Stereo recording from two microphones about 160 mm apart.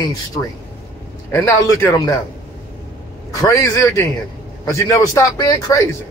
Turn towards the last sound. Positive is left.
turn(degrees=20)  # may be behind; listen again after turning